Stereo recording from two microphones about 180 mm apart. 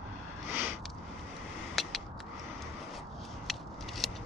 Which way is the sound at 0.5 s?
15° right (ahead or behind).